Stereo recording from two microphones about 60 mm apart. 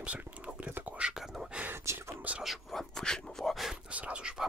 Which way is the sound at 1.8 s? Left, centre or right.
Right.